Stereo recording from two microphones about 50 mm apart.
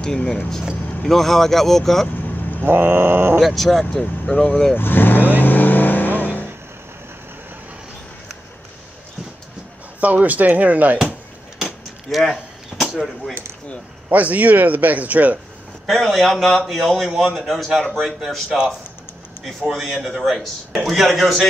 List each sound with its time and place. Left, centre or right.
0.0 s a man's voice: centre
2.6 s grunt: right
3.3 s a man's voice: centre
4.3 s speech: centre
4.7 s vehicle: left
9.9 s speech: right
11.5 s a sound: centre
14.0 s speech: right
15.9 s a man's voice: centre
19.7 s a man's voice: centre